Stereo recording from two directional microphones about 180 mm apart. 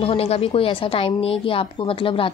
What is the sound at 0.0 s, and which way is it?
A woman's voice, 30° left (ahead or behind).